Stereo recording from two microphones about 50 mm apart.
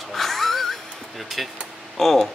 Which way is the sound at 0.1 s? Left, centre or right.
Centre.